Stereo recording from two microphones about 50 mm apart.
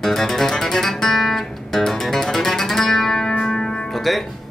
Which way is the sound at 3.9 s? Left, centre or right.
Centre.